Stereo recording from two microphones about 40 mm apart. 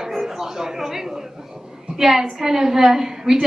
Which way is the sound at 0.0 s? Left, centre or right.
Centre.